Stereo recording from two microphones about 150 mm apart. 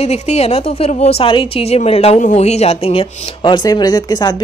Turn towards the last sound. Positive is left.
turn(degrees=25)  # may be behind; listen again after turning